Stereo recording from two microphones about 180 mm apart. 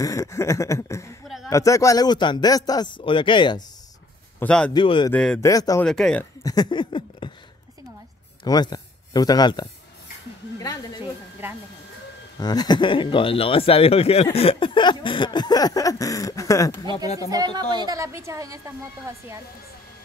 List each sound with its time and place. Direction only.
0.0 s a sound: 20° left (ahead or behind)
1.2 s a sound: centre (ahead or behind)
1.5 s speech: 15° left (ahead or behind)
4.4 s a man's voice: 5° left (ahead or behind)
4.7 s speech: 25° left (ahead or behind)
5.1 s speech: 5° left (ahead or behind)
5.4 s speech: 20° left (ahead or behind)
5.9 s speech: 5° left (ahead or behind)
6.4 s speech: 20° left (ahead or behind)
8.5 s a man's voice: 20° left (ahead or behind)
11.4 s speech: 10° right (ahead or behind)
12.4 s speech: 20° left (ahead or behind)
17.2 s a woman's voice: 20° right (ahead or behind)